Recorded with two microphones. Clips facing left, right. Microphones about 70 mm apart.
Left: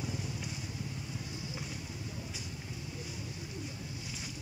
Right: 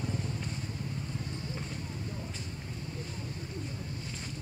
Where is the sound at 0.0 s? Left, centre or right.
Centre.